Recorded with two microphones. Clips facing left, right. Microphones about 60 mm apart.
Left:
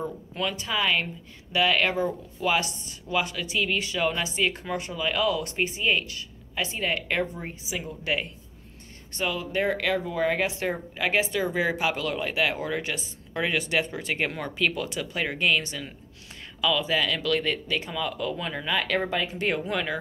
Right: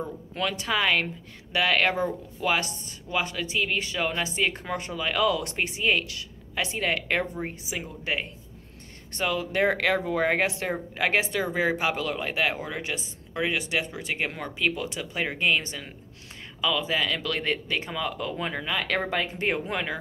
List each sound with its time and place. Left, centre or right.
0.3 s a woman's voice: right
2.4 s speech: right
7.3 s speech: right
9.1 s speech: right
10.0 s speech: right
11.5 s speech: right
12.5 s speech: centre